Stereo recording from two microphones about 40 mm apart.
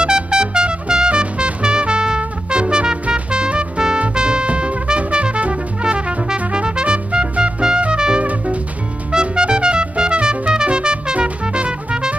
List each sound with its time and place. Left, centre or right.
0.0 s trumpet: right
4.1 s music: right
8.2 s music: right
9.1 s trumpet: right
11.4 s music: right